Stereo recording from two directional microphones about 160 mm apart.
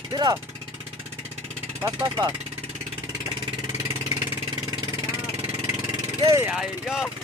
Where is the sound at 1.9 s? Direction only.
20° right (ahead or behind).